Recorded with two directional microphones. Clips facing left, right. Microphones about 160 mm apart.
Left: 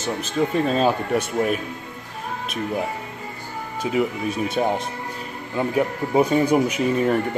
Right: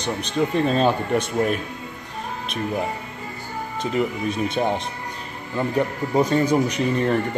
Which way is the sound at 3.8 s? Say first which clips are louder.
Left 1 dB; 5° left (ahead or behind).